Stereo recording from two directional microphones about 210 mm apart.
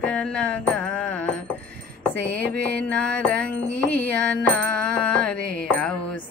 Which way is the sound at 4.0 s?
10° left (ahead or behind).